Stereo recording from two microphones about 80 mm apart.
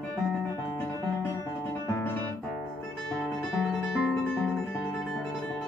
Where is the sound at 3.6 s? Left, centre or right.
Centre.